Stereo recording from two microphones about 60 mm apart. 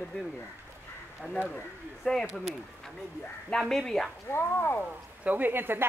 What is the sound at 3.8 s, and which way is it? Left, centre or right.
Speech, centre.